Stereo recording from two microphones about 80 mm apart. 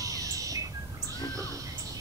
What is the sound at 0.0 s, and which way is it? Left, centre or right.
Bird, right.